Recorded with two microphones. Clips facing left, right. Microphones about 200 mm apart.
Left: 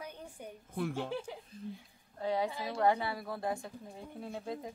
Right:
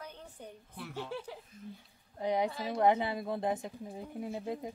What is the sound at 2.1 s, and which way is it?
Speech, 15° right (ahead or behind).